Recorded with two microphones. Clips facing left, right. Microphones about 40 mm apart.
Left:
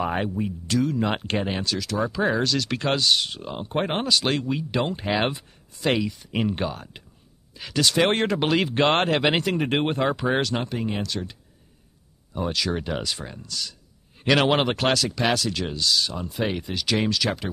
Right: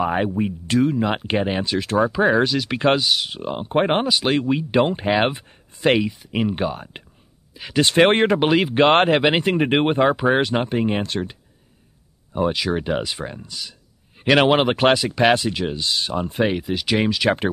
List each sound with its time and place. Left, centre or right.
0.0 s speech: centre
0.3 s speech: right
0.9 s speech: centre
3.3 s speech: right
4.0 s speech: centre
4.4 s speech: right
6.3 s speech: centre
7.8 s speech: right
8.2 s speech: right
12.3 s a man's voice: right
14.5 s speech: centre
14.8 s speech: right
16.4 s speech: centre